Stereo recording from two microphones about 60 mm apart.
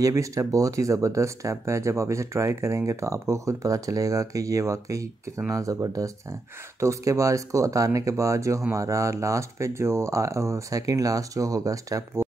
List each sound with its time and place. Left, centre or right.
0.1 s speech: right
5.5 s speech: right
6.8 s speech: right